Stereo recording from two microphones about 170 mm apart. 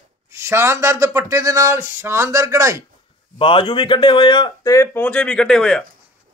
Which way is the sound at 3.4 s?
30° left (ahead or behind).